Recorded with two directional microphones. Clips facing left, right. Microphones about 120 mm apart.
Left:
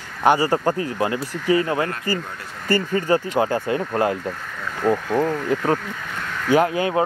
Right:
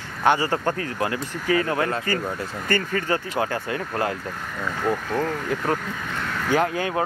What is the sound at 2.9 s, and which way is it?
Speech, 20° left (ahead or behind).